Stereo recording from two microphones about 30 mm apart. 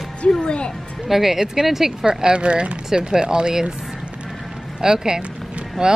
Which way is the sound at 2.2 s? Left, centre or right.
Right.